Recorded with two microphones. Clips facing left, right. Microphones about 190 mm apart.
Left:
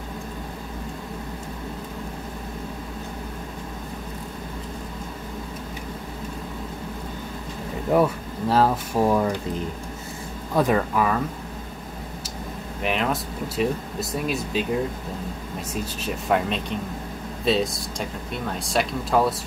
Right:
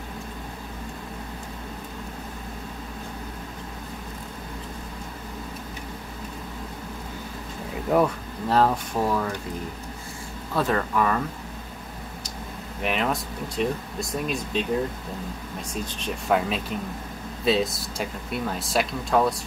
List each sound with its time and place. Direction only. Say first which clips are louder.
7.9 s speech: left 1 dB; centre (ahead or behind)
8.9 s speech: left 4 dB; 20° left (ahead or behind)
10.5 s speech: left 3 dB; 15° left (ahead or behind)
12.8 s speech: left 1 dB; centre (ahead or behind)
15.7 s speech: left 2 dB; 5° left (ahead or behind)